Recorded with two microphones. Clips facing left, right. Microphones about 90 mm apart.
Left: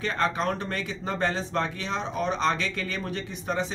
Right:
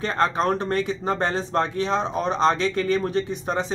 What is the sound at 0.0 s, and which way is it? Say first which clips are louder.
A man's voice: right 4 dB; 40° right (ahead or behind).